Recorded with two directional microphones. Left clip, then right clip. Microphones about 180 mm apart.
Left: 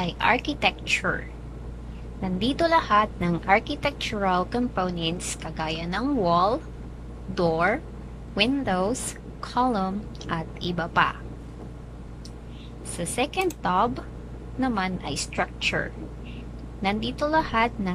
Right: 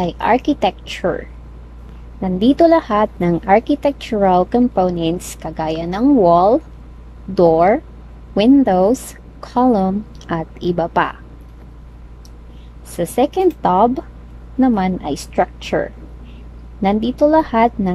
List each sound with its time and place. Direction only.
0.0 s a woman's voice: 35° right (ahead or behind)
2.2 s a woman's voice: 40° right (ahead or behind)
12.9 s a woman's voice: 35° right (ahead or behind)
16.8 s a woman's voice: 35° right (ahead or behind)